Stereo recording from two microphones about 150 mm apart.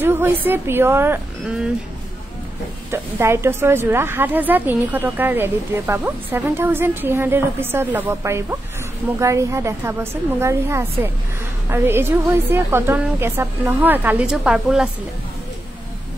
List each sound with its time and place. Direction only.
0.0 s speech: 15° right (ahead or behind)
2.9 s a woman's voice: 15° right (ahead or behind)